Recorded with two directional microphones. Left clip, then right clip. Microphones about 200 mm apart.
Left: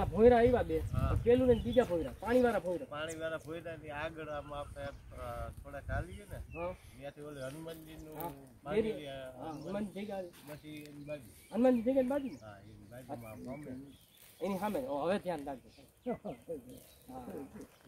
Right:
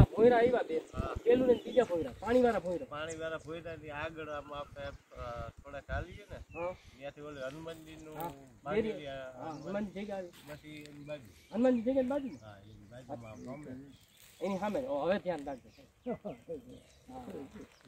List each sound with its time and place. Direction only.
0.0 s speech: 55° right (ahead or behind); by 12.1 s 15° right (ahead or behind)
13.2 s speech: 15° right (ahead or behind)
14.4 s speech: 10° left (ahead or behind)